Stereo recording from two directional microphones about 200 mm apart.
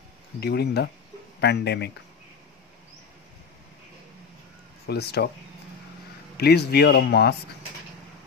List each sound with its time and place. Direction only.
0.4 s speech: 55° left (ahead or behind)
4.8 s speech: 55° left (ahead or behind)
6.3 s speech: 55° left (ahead or behind)